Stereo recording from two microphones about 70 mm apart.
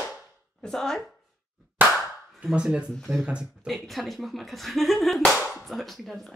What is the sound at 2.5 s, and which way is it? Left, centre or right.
Speech, centre.